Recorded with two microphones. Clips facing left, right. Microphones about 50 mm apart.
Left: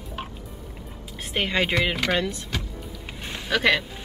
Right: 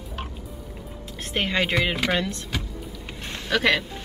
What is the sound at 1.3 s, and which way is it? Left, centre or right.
Speech, centre.